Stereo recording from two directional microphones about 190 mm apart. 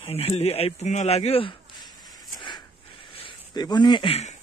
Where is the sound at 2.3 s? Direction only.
20° left (ahead or behind).